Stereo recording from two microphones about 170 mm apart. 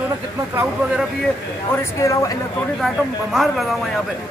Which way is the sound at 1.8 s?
20° left (ahead or behind).